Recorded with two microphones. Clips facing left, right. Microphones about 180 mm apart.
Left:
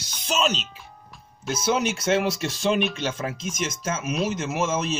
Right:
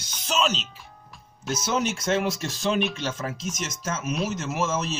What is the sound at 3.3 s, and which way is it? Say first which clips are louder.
Speech: left 3 dB; 40° right (ahead or behind).